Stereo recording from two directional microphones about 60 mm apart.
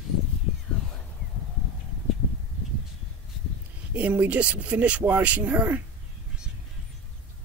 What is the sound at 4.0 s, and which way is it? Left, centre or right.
Speech, right.